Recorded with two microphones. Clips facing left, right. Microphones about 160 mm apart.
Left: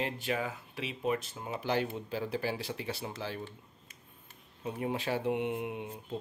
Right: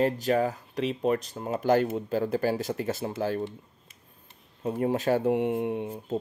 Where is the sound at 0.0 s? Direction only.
40° right (ahead or behind).